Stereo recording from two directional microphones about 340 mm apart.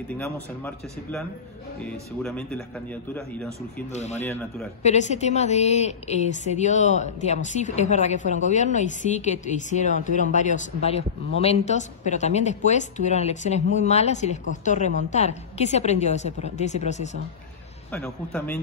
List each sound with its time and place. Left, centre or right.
0.1 s speech: centre
3.9 s a woman's voice: centre
17.9 s speech: centre